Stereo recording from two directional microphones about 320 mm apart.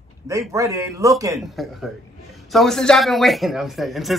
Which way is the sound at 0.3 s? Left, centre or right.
Centre.